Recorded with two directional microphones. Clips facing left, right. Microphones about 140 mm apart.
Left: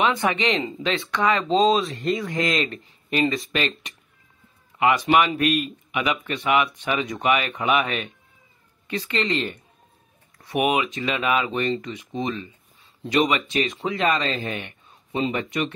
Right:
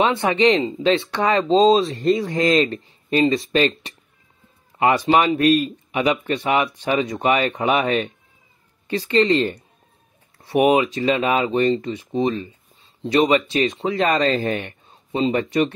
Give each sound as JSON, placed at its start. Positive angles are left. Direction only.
{"t": 0.0, "sound": "speech", "side_deg": -30}
{"t": 13.9, "sound": "speech", "side_deg": -40}
{"t": 14.9, "sound": "speech", "side_deg": -30}